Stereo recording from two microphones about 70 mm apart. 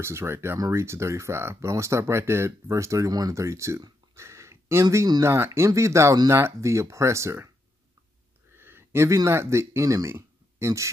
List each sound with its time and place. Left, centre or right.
0.0 s speech: right
3.1 s speech: right
3.3 s speech: right
4.1 s a sound: right
5.2 s speech: right
8.5 s speech: right